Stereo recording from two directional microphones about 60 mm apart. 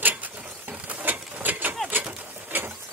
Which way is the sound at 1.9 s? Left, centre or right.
Right.